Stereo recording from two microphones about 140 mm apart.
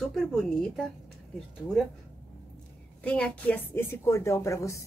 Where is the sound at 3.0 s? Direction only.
10° left (ahead or behind).